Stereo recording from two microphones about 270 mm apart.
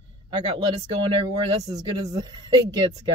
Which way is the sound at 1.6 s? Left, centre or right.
Centre.